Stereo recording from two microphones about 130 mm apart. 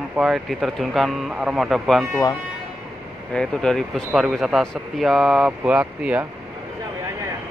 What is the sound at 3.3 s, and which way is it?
Speech, 5° left (ahead or behind).